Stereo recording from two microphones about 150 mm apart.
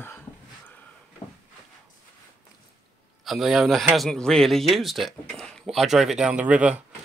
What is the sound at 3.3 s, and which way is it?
Speech, centre (ahead or behind).